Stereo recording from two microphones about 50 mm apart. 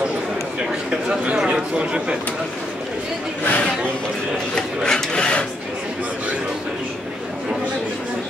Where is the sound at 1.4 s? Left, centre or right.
Centre.